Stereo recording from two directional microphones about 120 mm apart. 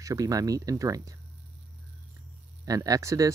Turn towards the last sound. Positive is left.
turn(degrees=-25)  # may be behind; listen again after turning